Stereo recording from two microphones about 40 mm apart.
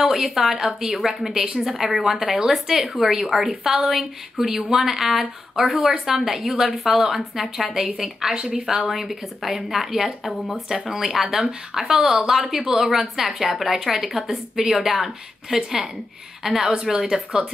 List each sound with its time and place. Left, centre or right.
0.1 s a woman's voice: centre
8.4 s speech: right
8.6 s a woman's voice: centre
16.4 s a woman's voice: centre